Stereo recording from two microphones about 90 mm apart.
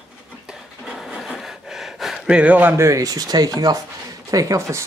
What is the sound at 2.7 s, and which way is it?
Speech, 35° right (ahead or behind).